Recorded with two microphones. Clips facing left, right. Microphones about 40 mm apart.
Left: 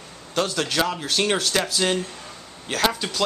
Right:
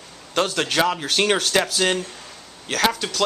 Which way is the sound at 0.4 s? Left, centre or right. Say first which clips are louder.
Right 3 dB; right.